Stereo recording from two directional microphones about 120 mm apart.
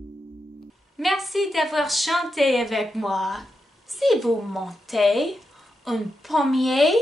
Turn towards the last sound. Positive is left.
turn(degrees=0)  # may be behind; listen again after turning